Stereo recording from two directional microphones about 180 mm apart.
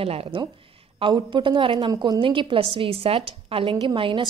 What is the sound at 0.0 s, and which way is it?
A woman's voice, 30° right (ahead or behind).